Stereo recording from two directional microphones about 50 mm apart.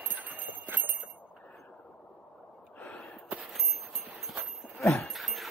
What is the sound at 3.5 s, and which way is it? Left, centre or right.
Walk, centre.